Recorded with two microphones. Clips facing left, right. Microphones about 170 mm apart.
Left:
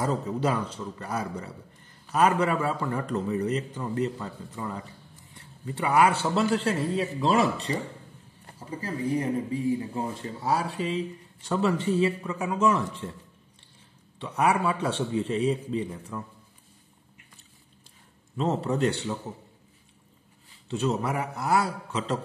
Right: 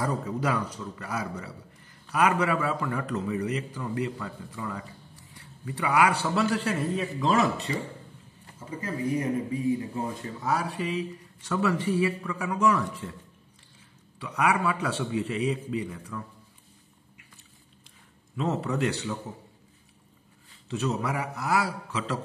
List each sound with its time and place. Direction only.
0.0 s a man's voice: 25° left (ahead or behind)
14.1 s speech: 25° left (ahead or behind)
18.3 s speech: 30° left (ahead or behind)
20.7 s speech: 30° left (ahead or behind)